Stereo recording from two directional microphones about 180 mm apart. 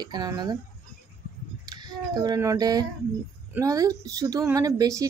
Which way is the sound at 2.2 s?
20° right (ahead or behind).